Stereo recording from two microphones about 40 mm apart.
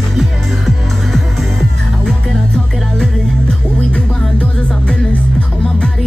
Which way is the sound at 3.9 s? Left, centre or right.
Left.